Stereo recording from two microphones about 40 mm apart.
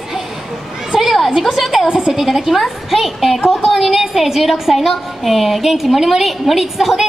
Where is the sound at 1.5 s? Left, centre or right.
Centre.